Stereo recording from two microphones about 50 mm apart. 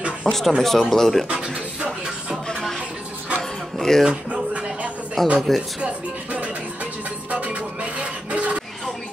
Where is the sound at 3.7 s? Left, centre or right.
Centre.